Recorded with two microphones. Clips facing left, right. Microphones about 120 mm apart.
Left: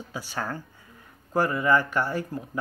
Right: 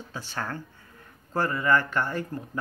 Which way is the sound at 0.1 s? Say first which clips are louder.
Left 2 dB; 10° left (ahead or behind).